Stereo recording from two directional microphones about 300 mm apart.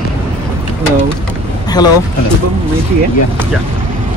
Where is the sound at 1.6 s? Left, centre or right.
Centre.